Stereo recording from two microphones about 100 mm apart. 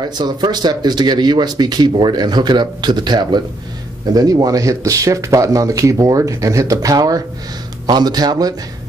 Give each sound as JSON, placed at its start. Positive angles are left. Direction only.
{"t": 0.0, "sound": "speech", "side_deg": -45}